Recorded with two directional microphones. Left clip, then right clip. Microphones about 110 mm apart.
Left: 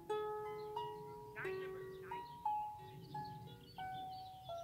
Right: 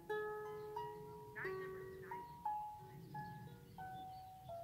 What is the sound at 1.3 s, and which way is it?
Music, 15° left (ahead or behind).